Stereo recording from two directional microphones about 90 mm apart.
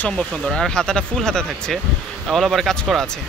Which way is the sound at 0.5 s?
10° left (ahead or behind).